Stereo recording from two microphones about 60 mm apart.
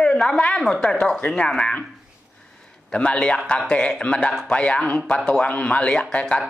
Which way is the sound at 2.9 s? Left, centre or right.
Centre.